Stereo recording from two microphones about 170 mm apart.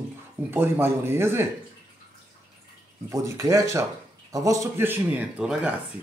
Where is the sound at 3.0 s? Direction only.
15° right (ahead or behind).